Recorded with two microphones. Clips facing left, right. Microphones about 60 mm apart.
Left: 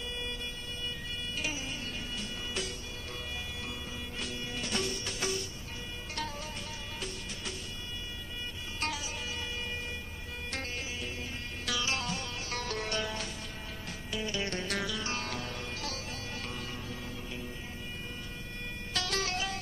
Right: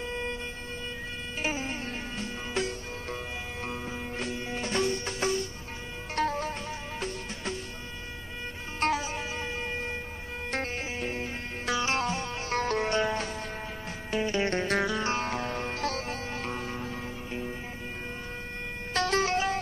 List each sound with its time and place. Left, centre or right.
0.1 s siren: right
1.4 s music: right
4.2 s music: right
8.7 s music: right
10.5 s music: right
18.9 s vehicle: right